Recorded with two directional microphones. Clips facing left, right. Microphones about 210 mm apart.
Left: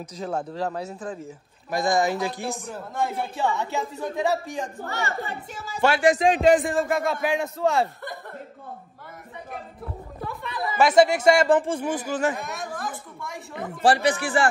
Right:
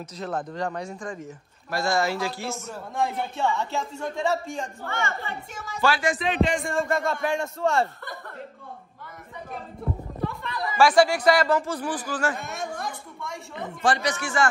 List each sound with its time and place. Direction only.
0.0 s a man's voice: 10° left (ahead or behind)
1.7 s a man's voice: 15° left (ahead or behind)
2.7 s a man's voice: centre (ahead or behind)
4.8 s a woman's voice: 40° left (ahead or behind)
5.8 s speech: 25° left (ahead or behind)
6.1 s a woman's voice: 40° left (ahead or behind)
6.6 s a man's voice: centre (ahead or behind)
10.2 s a sound: centre (ahead or behind)
10.8 s speech: 20° left (ahead or behind)
12.4 s a sound: centre (ahead or behind)
13.8 s a woman's voice: 35° left (ahead or behind)